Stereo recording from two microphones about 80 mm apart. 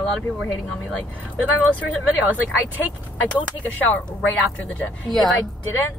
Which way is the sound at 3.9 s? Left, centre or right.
Centre.